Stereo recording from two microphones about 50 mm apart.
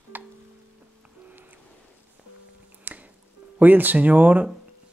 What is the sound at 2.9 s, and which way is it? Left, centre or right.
Music, right.